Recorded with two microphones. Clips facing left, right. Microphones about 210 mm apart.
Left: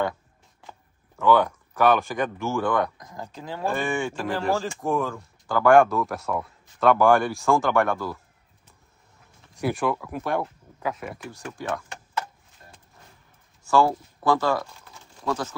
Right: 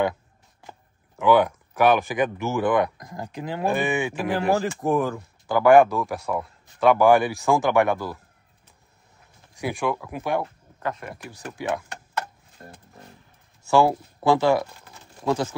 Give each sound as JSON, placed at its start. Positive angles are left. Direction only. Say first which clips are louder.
{"t": 1.1, "sound": "speech", "louder": "right 2 dB", "side_deg": -15}
{"t": 2.3, "sound": "speech", "louder": "right 1 dB", "side_deg": -20}
{"t": 2.6, "sound": "speech", "louder": "right 5 dB", "side_deg": -5}
{"t": 5.0, "sound": "speech", "louder": "right 3 dB", "side_deg": -5}
{"t": 9.6, "sound": "speech", "louder": "left 1 dB", "side_deg": 5}
{"t": 12.6, "sound": "a sound", "louder": "right 8 dB", "side_deg": -55}
{"t": 13.7, "sound": "speech", "louder": "right 2 dB", "side_deg": -10}
{"t": 14.2, "sound": "speech", "louder": "right 4 dB", "side_deg": -25}